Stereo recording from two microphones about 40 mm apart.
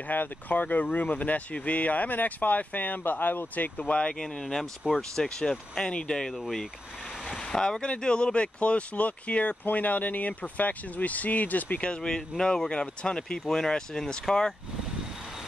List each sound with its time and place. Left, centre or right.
0.1 s speech: left
3.0 s speech: left
4.1 s speech: centre; by 11.8 s left
11.8 s speech: left